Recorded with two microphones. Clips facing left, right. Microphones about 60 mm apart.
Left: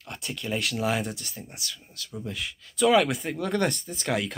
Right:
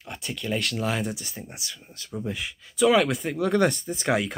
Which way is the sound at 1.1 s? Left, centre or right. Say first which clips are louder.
Right 3 dB; centre.